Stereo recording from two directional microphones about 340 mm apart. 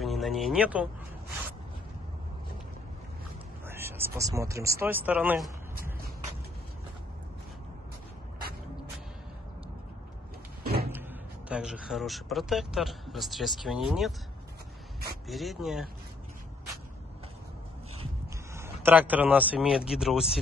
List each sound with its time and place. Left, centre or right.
0.0 s speech: centre
3.6 s speech: centre
10.6 s cupboard open or close: right
10.9 s speech: centre
15.2 s speech: centre
18.5 s speech: centre